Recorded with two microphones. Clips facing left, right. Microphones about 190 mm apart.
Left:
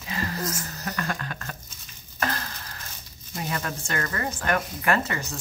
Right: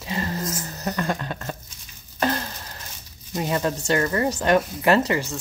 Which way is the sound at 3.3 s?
25° right (ahead or behind).